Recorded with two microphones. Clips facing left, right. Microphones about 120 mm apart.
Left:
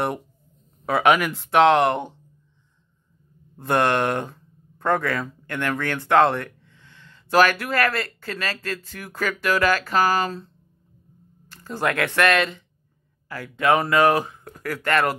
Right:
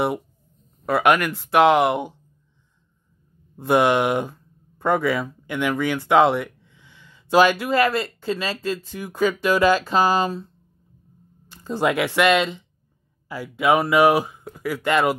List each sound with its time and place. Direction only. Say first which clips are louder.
0.8 s speech: even; centre (ahead or behind)
3.5 s speech: right 3 dB; 10° right (ahead or behind)